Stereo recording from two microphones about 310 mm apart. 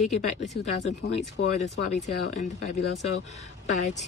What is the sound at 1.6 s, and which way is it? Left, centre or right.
Speech, left.